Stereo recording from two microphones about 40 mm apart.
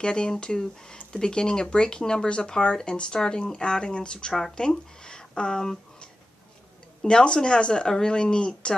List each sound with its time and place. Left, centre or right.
0.0 s speech: left